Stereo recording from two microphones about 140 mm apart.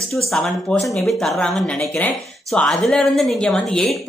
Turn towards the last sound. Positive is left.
turn(degrees=5)  # may be behind; listen again after turning